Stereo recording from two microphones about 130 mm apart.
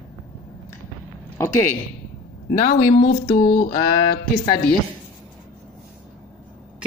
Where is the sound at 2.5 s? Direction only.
65° left (ahead or behind).